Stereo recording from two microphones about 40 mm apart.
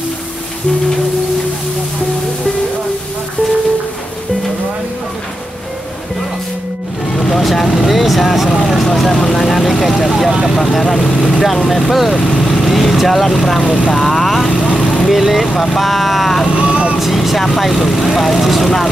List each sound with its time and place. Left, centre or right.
7.2 s speech: centre
11.1 s speech: centre
11.4 s speech: centre
14.6 s vehicle: left
15.0 s speech: centre
16.4 s vehicle: right
17.0 s speech: centre